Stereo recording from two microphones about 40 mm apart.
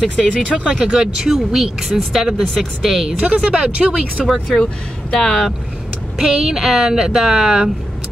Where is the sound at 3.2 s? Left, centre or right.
Right.